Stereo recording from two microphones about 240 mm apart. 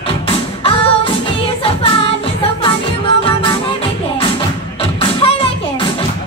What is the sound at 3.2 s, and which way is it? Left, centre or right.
Music, left.